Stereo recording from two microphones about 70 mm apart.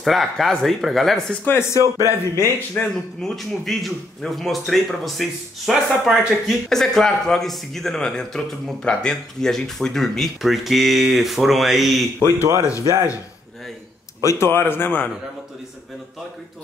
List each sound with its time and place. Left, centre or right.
0.0 s speech: centre
1.4 s a man's voice: left
1.8 s speech: right
2.8 s speech: centre
3.2 s speech: centre
12.2 s speech: left
14.2 s a man's voice: left